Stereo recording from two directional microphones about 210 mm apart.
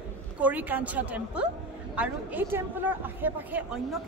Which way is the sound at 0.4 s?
5° right (ahead or behind).